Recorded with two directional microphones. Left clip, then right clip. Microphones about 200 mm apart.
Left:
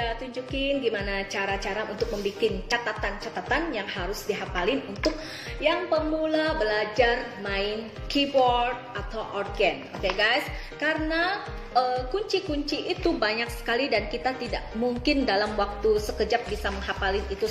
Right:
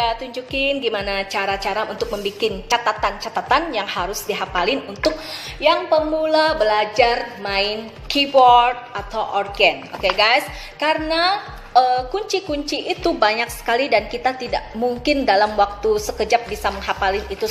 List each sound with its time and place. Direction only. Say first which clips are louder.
0.0 s a woman's voice: right 9 dB; 5° left (ahead or behind)